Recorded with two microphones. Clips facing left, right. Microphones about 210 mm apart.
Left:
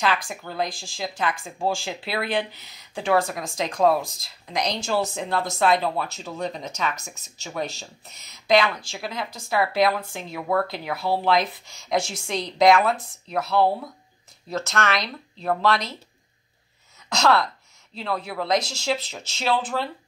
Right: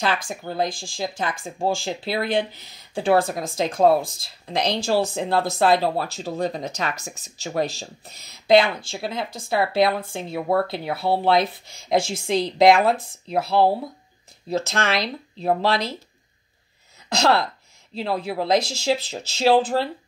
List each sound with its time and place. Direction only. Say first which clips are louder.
0.3 s speech: right 3 dB; 35° right (ahead or behind)
17.2 s speech: right 1 dB; 30° right (ahead or behind)